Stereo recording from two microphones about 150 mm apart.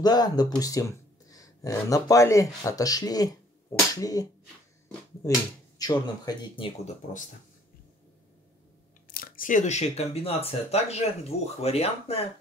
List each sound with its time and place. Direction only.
0.0 s speech: 25° left (ahead or behind)
3.9 s slap: 25° left (ahead or behind)
5.8 s speech: 25° left (ahead or behind); by 7.2 s 50° left (ahead or behind)
9.1 s speech: 75° left (ahead or behind); by 12.3 s 40° left (ahead or behind)